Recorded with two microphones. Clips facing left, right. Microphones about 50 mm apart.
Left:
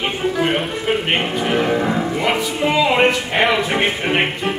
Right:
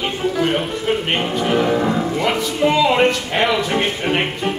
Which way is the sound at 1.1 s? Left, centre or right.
Centre.